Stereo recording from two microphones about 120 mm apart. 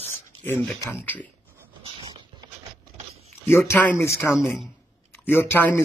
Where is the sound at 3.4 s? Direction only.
20° left (ahead or behind).